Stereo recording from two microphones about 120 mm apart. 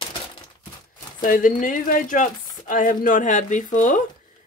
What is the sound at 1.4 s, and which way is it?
Speech, 90° left.